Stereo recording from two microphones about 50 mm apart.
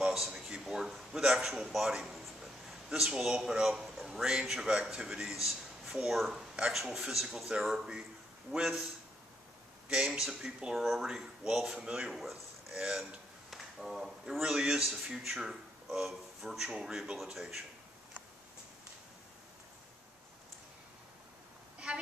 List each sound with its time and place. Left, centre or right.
0.0 s a sound: centre
0.5 s a man's voice: centre
6.3 s speech: right
6.7 s speech: centre
9.8 s speech: centre
12.7 s speech: centre
13.5 s a sound: centre
14.4 s speech: centre
21.7 s a sound: centre